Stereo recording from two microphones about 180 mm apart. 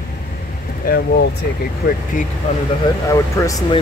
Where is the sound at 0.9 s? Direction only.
60° left (ahead or behind).